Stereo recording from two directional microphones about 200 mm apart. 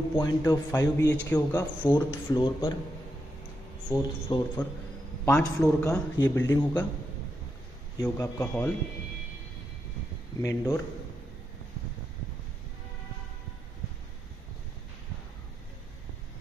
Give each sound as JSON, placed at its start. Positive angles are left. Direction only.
{"t": 0.2, "sound": "a man's voice", "side_deg": 20}
{"t": 3.9, "sound": "a man's voice", "side_deg": 20}
{"t": 8.0, "sound": "a man's voice", "side_deg": 15}
{"t": 10.4, "sound": "a man's voice", "side_deg": 15}